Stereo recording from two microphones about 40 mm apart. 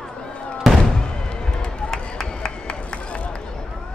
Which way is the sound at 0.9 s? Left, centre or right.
Centre.